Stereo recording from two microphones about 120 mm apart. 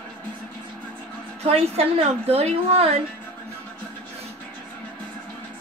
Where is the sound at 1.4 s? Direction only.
55° right (ahead or behind).